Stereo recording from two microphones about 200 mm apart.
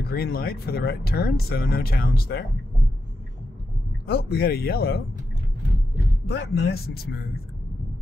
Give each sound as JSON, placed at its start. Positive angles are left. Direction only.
{"t": 0.1, "sound": "speech", "side_deg": 50}
{"t": 4.0, "sound": "speech", "side_deg": 50}
{"t": 6.2, "sound": "speech", "side_deg": 55}